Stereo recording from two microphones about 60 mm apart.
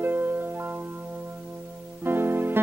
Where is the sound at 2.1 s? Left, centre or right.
Right.